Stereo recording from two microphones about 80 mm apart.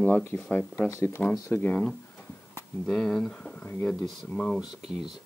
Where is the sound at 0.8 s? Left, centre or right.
Left.